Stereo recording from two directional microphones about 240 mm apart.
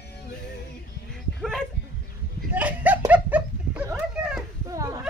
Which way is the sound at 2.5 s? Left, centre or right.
Centre.